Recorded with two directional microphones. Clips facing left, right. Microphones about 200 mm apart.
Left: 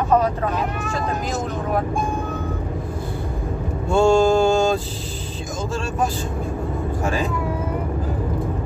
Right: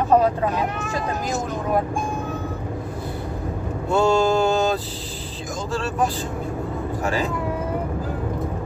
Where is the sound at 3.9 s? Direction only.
25° left (ahead or behind).